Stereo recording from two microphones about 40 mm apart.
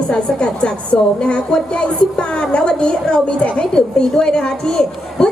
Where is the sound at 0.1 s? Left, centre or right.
Left.